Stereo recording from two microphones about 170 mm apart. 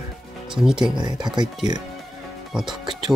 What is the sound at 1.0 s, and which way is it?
Speech, 25° right (ahead or behind).